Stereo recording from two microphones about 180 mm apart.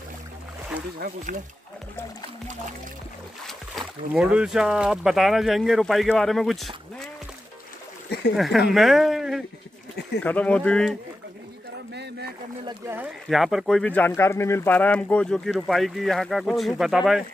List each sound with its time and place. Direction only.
0.9 s speech: 50° right (ahead or behind)
3.4 s speech: centre (ahead or behind)
8.4 s speech: centre (ahead or behind)
11.9 s a sound: 70° right (ahead or behind)
12.6 s speech: 15° right (ahead or behind)
13.3 s speech: centre (ahead or behind)